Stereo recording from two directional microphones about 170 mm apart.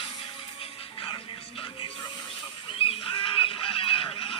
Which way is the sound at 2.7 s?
35° left (ahead or behind).